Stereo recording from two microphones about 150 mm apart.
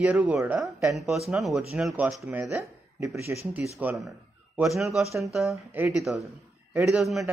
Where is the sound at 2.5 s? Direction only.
20° right (ahead or behind).